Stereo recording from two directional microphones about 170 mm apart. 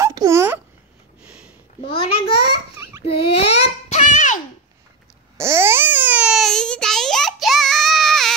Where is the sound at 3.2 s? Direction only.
70° left (ahead or behind).